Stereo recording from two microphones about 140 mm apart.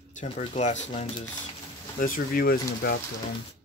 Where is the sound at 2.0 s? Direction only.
85° left.